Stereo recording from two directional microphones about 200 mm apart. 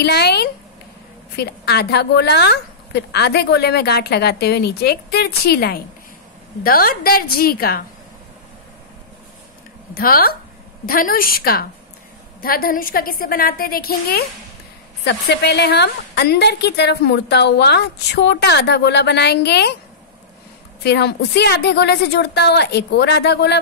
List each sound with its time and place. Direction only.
0.0 s a woman's voice: 55° left (ahead or behind)
9.9 s a woman's voice: 50° left (ahead or behind)
20.8 s a woman's voice: 55° left (ahead or behind)